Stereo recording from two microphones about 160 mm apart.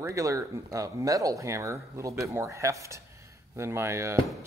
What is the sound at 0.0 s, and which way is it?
A man's voice, 20° right (ahead or behind).